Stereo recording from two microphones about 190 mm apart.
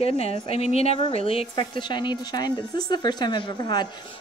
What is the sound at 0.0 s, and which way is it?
A woman's voice, 30° left (ahead or behind).